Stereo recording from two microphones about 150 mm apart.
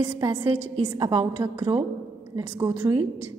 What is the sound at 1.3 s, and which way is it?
A woman's voice, 20° right (ahead or behind).